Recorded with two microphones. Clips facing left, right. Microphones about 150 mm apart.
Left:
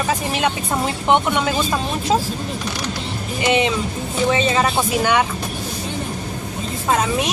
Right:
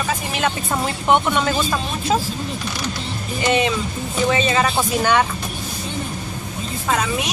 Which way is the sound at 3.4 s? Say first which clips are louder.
Left 1 dB; 20° left (ahead or behind).